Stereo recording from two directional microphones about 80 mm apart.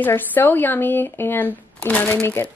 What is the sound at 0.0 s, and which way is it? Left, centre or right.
A woman's voice, left.